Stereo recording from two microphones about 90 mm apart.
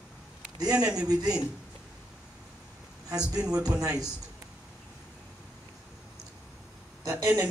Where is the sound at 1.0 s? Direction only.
45° right (ahead or behind).